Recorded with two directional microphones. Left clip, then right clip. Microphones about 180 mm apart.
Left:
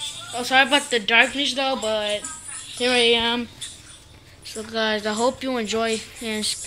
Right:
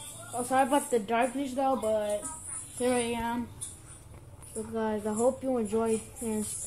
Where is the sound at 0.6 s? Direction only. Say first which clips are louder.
Left 8 dB; 15° left (ahead or behind).